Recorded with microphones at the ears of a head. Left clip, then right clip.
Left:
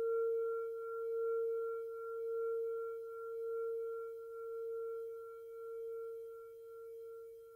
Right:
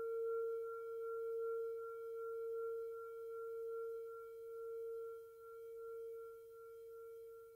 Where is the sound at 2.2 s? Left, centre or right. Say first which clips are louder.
Left 7 dB; left.